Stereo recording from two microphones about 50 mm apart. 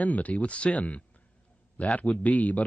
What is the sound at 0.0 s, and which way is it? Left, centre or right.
Speech, left.